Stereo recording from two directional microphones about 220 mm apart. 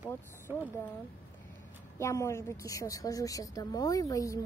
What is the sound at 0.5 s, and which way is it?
Speech, 10° right (ahead or behind).